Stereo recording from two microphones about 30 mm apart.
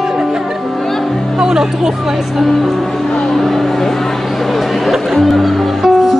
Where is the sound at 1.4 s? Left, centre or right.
Centre.